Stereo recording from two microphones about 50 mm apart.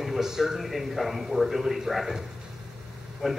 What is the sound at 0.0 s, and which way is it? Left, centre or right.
Speech, centre.